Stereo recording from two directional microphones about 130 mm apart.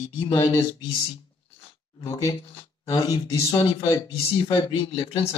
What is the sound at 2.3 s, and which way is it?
Speech, 45° left (ahead or behind).